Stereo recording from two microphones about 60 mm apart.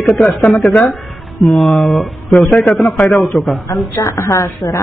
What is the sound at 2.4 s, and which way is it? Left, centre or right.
Speech, centre.